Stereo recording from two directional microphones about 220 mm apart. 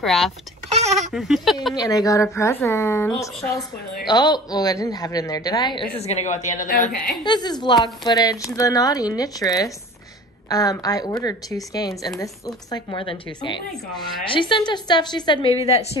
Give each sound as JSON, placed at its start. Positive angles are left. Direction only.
{"t": 0.0, "sound": "speech", "side_deg": 0}
{"t": 0.7, "sound": "a sound", "side_deg": -30}
{"t": 1.1, "sound": "speech", "side_deg": 0}
{"t": 1.8, "sound": "speech", "side_deg": 15}
{"t": 5.9, "sound": "a woman's voice", "side_deg": 30}
{"t": 7.2, "sound": "a woman's voice", "side_deg": 20}